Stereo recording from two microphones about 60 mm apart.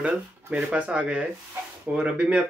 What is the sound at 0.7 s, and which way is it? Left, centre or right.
Speech, right.